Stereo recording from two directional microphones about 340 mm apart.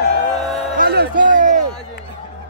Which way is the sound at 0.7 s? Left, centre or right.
Right.